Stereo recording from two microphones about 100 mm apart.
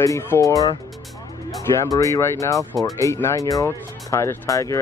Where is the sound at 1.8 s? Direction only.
35° left (ahead or behind).